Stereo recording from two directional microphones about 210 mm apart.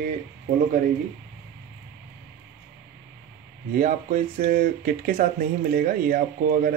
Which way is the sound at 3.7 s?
40° right (ahead or behind).